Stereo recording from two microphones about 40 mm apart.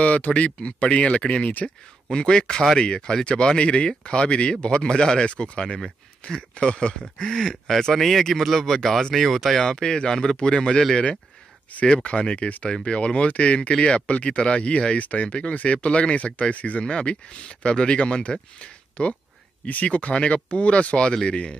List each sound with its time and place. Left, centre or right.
0.0 s speech: left; by 5.2 s centre
5.2 s speech: left
7.2 s speech: centre
9.6 s speech: centre
12.0 s speech: left
12.8 s speech: left
16.8 s speech: left